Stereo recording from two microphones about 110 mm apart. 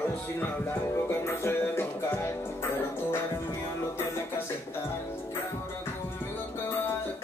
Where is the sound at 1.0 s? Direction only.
20° left (ahead or behind).